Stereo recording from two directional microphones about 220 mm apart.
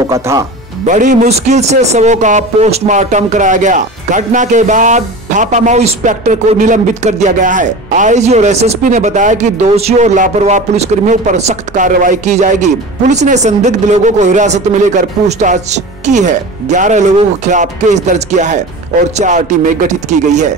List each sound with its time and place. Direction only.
0.1 s speech: 15° right (ahead or behind)
0.8 s a man's voice: 35° right (ahead or behind)